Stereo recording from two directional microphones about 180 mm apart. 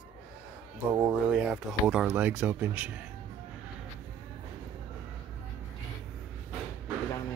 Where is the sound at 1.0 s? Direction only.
10° right (ahead or behind).